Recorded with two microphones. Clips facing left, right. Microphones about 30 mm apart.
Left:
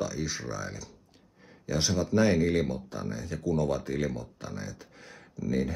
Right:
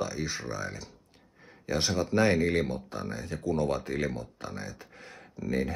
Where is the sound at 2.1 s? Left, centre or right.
Centre.